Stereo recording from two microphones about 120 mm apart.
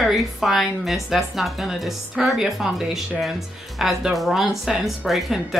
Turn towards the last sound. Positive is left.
turn(degrees=0)  # may be behind; listen again after turning